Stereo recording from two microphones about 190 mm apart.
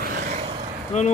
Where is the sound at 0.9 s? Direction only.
35° left (ahead or behind).